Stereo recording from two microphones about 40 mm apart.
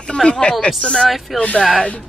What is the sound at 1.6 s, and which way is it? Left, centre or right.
Speech, centre.